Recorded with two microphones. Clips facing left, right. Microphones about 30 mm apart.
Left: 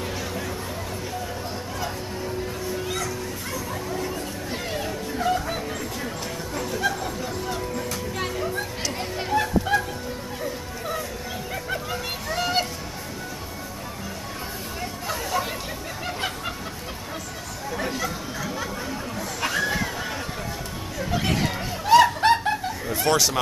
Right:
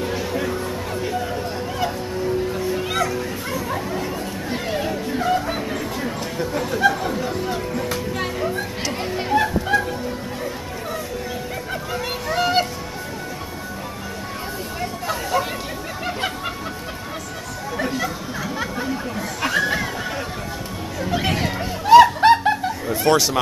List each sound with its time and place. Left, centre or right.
0.0 s music: centre
2.6 s music: right
8.2 s children playing: centre
12.3 s music: centre
14.8 s a sound: centre
17.7 s chatter: centre
21.0 s snicker: centre